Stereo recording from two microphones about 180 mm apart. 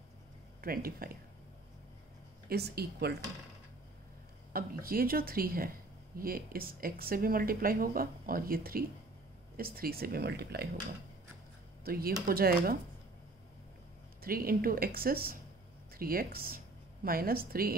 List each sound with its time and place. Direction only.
0.6 s speech: 55° right (ahead or behind)
2.5 s speech: 65° right (ahead or behind)
4.5 s speech: 55° right (ahead or behind)
11.8 s speech: 55° right (ahead or behind)
14.2 s speech: 55° right (ahead or behind)